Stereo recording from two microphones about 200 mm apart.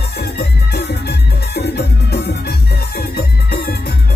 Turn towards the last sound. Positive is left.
turn(degrees=50)  # may be behind; listen again after turning